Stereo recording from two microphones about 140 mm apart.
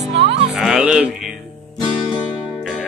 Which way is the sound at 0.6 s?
5° right (ahead or behind).